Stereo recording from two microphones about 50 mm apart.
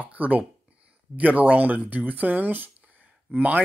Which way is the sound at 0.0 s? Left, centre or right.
Right.